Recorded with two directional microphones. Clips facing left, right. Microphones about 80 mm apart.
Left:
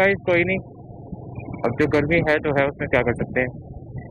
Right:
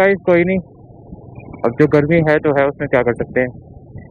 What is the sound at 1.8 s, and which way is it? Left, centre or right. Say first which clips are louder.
Speech: right 7 dB; right.